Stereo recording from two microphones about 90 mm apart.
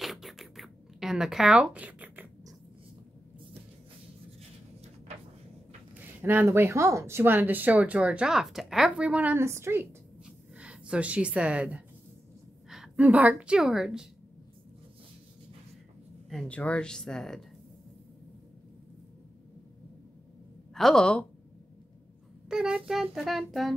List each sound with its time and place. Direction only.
0.0 s scratch: centre (ahead or behind); by 2.2 s 15° right (ahead or behind)
5.9 s a woman's voice: 25° right (ahead or behind)
9.4 s a woman's voice: 30° right (ahead or behind)
10.2 s a sound: 10° right (ahead or behind)
12.9 s a woman's voice: 15° right (ahead or behind)
16.4 s speech: 15° left (ahead or behind)
20.7 s child singing: 5° left (ahead or behind)
22.5 s child singing: 10° right (ahead or behind)